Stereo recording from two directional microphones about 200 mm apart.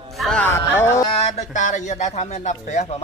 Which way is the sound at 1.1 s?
30° left (ahead or behind).